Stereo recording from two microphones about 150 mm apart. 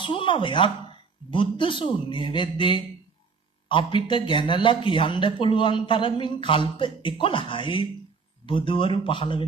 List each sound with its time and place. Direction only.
0.0 s speech: 35° left (ahead or behind)